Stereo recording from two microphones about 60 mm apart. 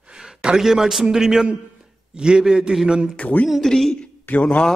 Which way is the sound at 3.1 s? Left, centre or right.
Left.